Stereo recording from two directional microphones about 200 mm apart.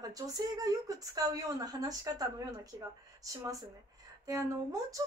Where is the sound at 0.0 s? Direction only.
20° right (ahead or behind).